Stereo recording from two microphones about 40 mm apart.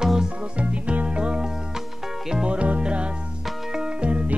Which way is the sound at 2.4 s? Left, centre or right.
Right.